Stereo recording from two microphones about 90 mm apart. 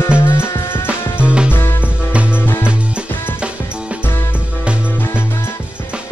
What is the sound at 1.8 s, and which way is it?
Music, 15° right (ahead or behind).